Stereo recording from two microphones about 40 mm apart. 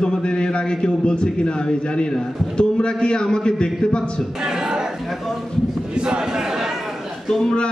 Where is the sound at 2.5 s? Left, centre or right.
Left.